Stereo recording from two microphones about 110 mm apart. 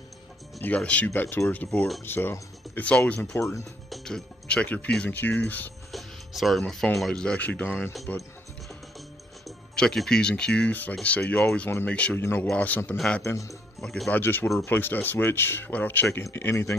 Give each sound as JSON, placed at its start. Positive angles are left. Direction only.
{"t": 0.7, "sound": "speech", "side_deg": 10}
{"t": 3.2, "sound": "speech", "side_deg": 25}
{"t": 3.9, "sound": "speech", "side_deg": 5}
{"t": 5.9, "sound": "music", "side_deg": 0}
{"t": 6.7, "sound": "speech", "side_deg": 5}
{"t": 9.8, "sound": "speech", "side_deg": 5}
{"t": 13.2, "sound": "speech", "side_deg": 30}
{"t": 13.7, "sound": "speech", "side_deg": 5}
{"t": 14.2, "sound": "speech", "side_deg": 20}